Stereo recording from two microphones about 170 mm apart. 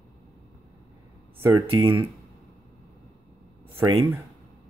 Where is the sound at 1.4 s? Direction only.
15° right (ahead or behind).